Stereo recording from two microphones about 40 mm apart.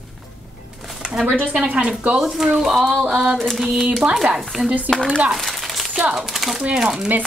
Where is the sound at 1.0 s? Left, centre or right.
Right.